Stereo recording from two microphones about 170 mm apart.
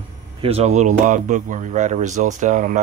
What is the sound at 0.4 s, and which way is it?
Speech, 35° right (ahead or behind).